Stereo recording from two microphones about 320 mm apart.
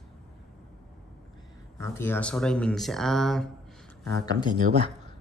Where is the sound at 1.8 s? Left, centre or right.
Centre.